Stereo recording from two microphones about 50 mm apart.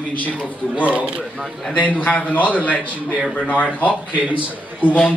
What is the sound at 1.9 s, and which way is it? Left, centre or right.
Speech, left.